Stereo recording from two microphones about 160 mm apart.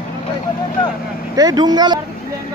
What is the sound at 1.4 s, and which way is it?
Speech, 25° right (ahead or behind).